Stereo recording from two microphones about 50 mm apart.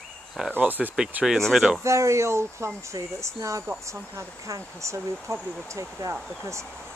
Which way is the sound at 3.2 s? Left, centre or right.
Right.